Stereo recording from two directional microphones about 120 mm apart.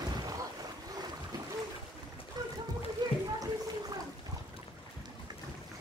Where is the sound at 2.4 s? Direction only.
35° right (ahead or behind).